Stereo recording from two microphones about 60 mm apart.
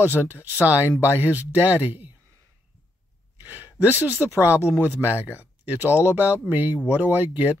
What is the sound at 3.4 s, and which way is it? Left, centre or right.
Speech, right.